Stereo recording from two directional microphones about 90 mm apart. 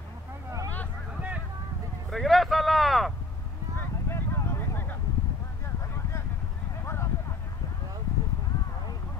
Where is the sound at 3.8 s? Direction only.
30° left (ahead or behind).